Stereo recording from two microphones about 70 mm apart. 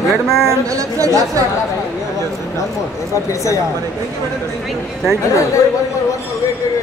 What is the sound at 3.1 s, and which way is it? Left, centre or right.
Speech, left.